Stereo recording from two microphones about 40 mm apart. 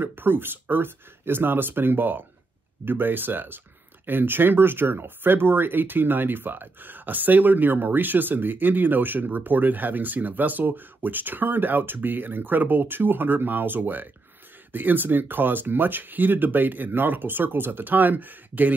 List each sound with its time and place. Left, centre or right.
0.0 s speech: right